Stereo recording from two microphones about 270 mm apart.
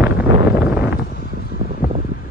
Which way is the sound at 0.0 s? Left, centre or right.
Centre.